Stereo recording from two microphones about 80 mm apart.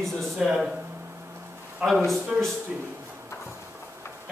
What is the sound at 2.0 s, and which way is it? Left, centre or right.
Speech, centre.